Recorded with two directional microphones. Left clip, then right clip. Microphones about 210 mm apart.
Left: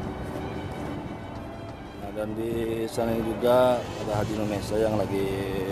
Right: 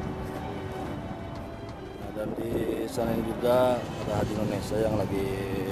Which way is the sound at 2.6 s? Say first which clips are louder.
Left 1 dB; centre (ahead or behind).